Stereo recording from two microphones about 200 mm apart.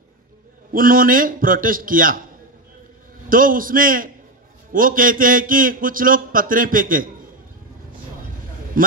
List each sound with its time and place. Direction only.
0.7 s a man's voice: 45° right (ahead or behind)
3.3 s a man's voice: 45° right (ahead or behind)
8.8 s a man's voice: 45° right (ahead or behind)